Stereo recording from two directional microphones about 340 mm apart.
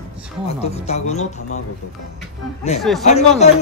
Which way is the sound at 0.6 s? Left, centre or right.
Centre.